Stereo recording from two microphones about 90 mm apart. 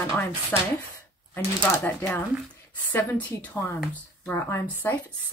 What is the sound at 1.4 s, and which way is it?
Speech, 30° left (ahead or behind).